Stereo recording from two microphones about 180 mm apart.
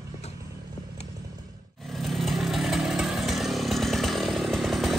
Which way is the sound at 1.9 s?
Centre (ahead or behind).